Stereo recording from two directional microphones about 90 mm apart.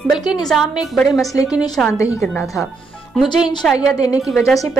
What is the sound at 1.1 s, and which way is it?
Speech, 40° left (ahead or behind).